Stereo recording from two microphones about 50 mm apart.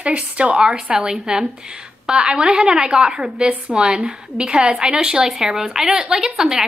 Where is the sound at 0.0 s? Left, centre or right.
Right.